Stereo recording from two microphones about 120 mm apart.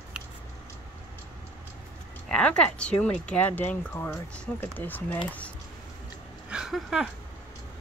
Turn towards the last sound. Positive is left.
turn(degrees=-5)  # may be behind; listen again after turning